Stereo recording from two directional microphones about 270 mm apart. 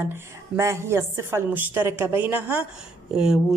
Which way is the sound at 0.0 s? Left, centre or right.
Centre.